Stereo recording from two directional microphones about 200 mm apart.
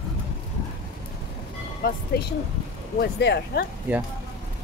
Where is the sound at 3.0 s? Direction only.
55° left (ahead or behind).